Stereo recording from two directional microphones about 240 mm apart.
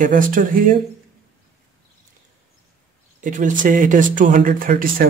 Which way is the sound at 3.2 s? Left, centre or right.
Right.